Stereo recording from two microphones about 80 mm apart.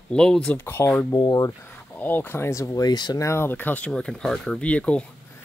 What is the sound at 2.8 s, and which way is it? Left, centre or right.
Speech, left.